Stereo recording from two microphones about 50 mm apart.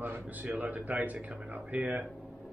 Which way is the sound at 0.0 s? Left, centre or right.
Right.